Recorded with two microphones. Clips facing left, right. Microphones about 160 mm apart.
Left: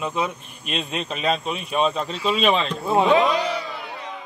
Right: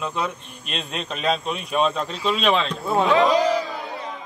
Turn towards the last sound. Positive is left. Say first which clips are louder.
# right 3 dB
turn(degrees=-40)  # may be behind; listen again after turning